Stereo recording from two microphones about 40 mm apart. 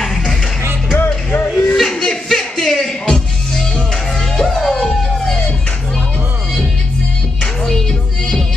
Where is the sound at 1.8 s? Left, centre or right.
Centre.